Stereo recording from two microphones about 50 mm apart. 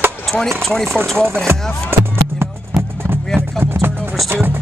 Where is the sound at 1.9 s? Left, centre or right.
Right.